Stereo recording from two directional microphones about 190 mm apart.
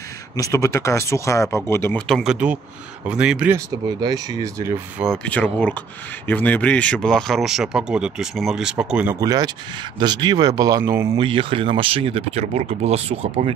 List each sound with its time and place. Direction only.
0.4 s speech: 15° left (ahead or behind); by 3.6 s 10° right (ahead or behind)
3.8 s speech: 20° right (ahead or behind)
5.0 s speech: 5° left (ahead or behind)
9.2 s speech: 20° right (ahead or behind)
11.1 s speech: 25° right (ahead or behind)